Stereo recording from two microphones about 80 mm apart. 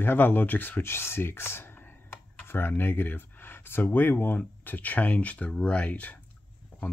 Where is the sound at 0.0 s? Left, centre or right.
Left.